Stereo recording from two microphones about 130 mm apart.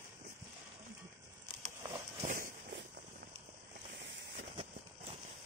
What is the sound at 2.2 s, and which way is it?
Walk, 90° right.